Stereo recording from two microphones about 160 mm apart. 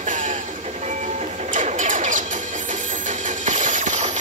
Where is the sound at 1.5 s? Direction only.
50° right (ahead or behind).